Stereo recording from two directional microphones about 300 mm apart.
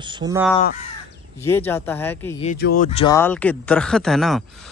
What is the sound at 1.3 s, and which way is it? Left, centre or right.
Speech, centre.